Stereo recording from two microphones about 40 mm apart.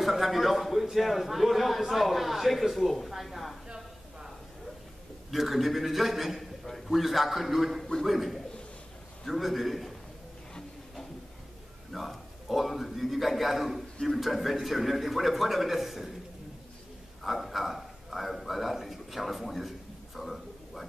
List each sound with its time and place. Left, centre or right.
0.0 s a man's voice: centre
3.6 s a sound: centre
5.3 s a man's voice: centre
11.9 s a man's voice: centre
17.2 s a man's voice: centre
20.2 s a sound: centre